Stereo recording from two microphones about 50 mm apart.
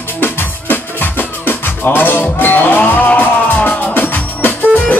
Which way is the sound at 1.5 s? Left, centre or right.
Left.